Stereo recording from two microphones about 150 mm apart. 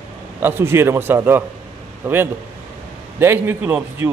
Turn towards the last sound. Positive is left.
turn(degrees=-10)  # may be behind; listen again after turning